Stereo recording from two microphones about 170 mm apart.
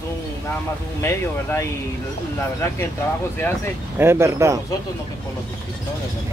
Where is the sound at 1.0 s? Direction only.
15° left (ahead or behind).